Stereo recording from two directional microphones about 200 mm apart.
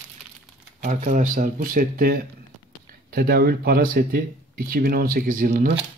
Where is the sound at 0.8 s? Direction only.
35° right (ahead or behind).